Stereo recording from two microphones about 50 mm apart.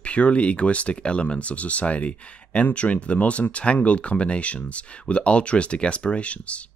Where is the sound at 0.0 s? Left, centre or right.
Left.